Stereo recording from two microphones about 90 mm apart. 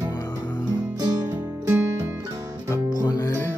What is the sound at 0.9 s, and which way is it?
Music, 45° right (ahead or behind).